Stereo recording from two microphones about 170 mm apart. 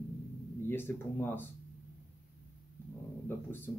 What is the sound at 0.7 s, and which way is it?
Speech, 15° left (ahead or behind).